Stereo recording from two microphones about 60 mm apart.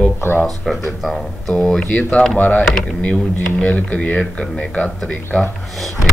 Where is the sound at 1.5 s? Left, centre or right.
Centre.